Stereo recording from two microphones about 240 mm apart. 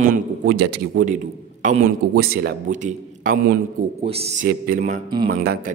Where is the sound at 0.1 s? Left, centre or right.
Right.